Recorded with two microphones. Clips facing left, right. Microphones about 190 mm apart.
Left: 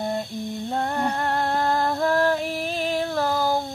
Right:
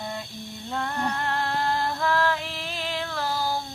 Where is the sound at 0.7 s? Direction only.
40° left (ahead or behind).